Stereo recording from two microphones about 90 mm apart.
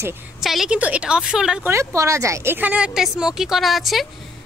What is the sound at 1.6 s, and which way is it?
Speech, 35° right (ahead or behind).